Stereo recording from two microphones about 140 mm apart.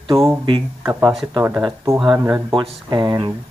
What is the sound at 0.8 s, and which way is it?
Speech, 20° right (ahead or behind).